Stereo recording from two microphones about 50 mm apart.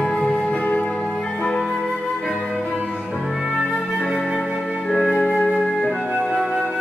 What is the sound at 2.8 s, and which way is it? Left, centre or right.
Music, right.